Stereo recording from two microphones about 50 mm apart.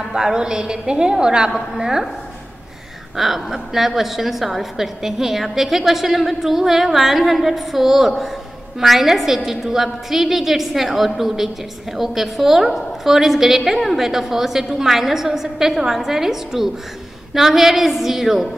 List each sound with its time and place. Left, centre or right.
0.0 s a woman's voice: centre
3.2 s a woman's voice: centre